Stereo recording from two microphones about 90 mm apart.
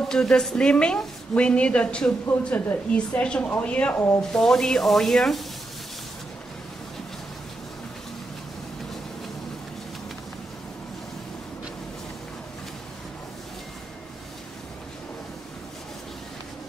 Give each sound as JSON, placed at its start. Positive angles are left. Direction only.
{"t": 0.1, "sound": "a woman's voice", "side_deg": 5}
{"t": 4.3, "sound": "sanding", "side_deg": 5}